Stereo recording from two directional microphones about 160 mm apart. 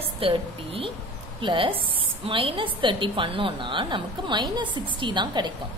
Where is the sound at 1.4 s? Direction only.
30° right (ahead or behind).